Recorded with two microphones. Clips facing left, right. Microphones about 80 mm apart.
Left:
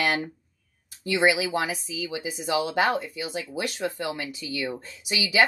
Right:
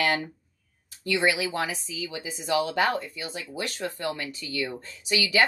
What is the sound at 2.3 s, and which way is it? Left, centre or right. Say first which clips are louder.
Speech: right 1 dB; centre.